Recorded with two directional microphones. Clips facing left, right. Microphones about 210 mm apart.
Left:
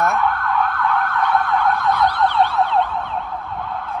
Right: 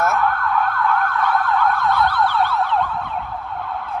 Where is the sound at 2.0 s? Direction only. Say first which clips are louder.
Left 1 dB; 20° left (ahead or behind).